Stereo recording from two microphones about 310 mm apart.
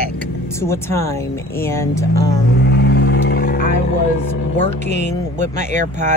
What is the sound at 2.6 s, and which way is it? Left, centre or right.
Vehicle, left.